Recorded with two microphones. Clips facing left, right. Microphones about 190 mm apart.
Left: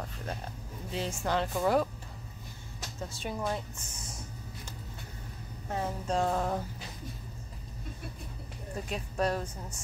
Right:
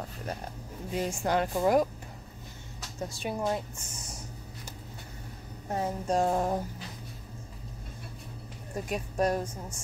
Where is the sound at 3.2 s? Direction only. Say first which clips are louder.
Right 3 dB; 15° right (ahead or behind).